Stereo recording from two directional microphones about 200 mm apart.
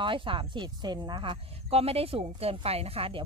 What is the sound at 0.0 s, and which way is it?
Speech, 25° right (ahead or behind).